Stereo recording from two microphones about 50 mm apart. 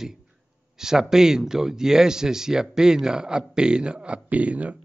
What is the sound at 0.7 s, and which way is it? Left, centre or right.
Speech, centre.